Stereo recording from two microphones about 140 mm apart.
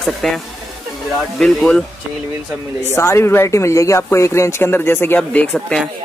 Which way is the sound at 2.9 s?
20° left (ahead or behind).